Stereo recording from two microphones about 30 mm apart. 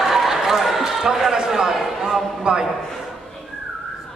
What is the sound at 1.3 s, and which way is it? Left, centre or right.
A man's voice, right.